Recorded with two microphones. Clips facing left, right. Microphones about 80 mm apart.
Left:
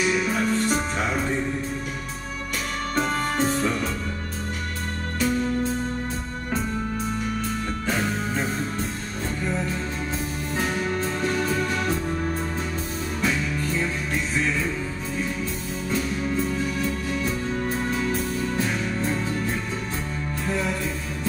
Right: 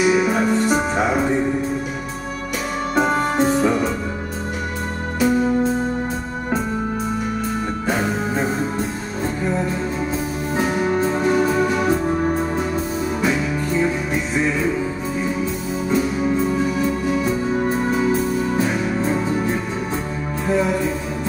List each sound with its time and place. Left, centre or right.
0.0 s music: centre
3.0 s music: centre
5.2 s music: centre
7.8 s music: centre
12.1 s music: right
13.2 s music: centre
15.9 s music: centre